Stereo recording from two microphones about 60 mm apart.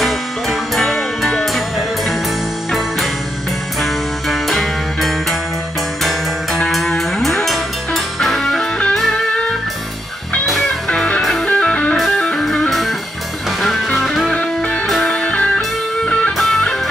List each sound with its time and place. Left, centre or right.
0.0 s music: centre
3.8 s music: centre
10.9 s music: centre
11.4 s music: centre
15.0 s music: centre